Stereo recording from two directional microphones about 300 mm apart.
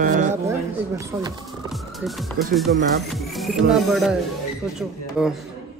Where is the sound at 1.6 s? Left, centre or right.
Centre.